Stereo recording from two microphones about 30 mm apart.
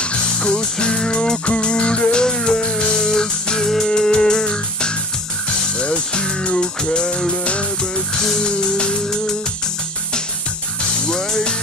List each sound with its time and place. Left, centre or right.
0.0 s music: left
5.8 s music: left
8.5 s music: left
11.1 s music: centre